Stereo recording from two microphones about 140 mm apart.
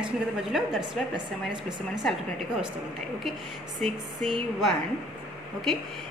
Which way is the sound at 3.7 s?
Centre (ahead or behind).